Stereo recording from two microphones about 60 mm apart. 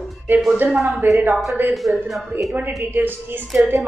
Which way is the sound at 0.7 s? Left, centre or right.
Centre.